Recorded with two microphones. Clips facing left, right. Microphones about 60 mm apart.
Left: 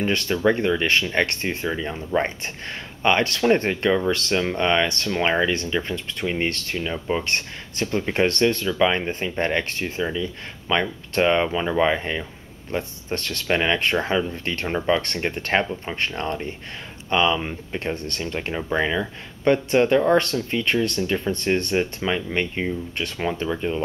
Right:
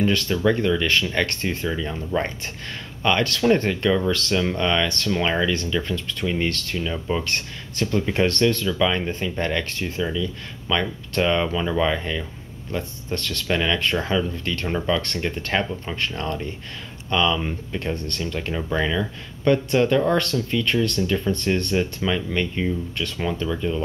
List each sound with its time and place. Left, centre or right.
0.0 s speech: left